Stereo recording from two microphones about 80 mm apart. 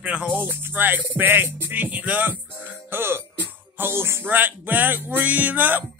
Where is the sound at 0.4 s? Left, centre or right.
Right.